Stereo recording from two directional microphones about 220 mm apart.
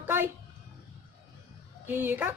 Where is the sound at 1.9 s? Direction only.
10° right (ahead or behind).